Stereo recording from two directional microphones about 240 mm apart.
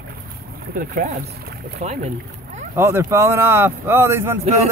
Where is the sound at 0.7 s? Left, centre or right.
Right.